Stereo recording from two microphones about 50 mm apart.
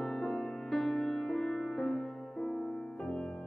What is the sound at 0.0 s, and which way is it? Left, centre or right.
Music, centre.